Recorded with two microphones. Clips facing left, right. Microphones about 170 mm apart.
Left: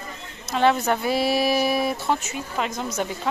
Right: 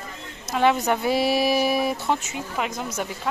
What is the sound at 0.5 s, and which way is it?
Speech, 10° right (ahead or behind).